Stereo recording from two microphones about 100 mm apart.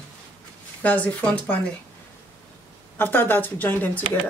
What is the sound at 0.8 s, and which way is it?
Speech, 15° left (ahead or behind).